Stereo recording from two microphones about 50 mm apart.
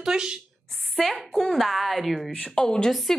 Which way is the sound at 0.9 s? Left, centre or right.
Centre.